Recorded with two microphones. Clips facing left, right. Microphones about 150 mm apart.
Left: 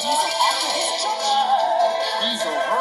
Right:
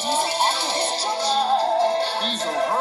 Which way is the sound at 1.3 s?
65° left (ahead or behind).